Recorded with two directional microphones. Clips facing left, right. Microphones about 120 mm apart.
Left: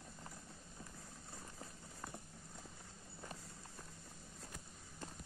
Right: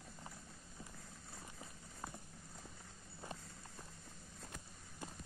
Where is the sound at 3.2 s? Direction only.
15° right (ahead or behind).